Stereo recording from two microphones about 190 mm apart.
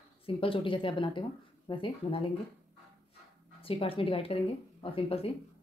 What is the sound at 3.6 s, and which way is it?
Speech, 30° left (ahead or behind).